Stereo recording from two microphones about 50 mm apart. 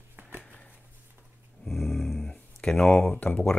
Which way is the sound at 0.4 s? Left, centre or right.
Left.